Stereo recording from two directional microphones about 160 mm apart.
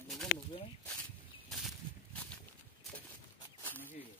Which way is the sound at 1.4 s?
Centre (ahead or behind).